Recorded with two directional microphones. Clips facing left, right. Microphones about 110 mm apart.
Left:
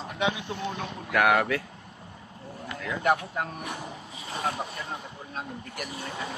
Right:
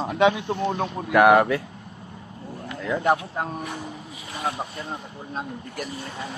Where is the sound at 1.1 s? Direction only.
25° right (ahead or behind).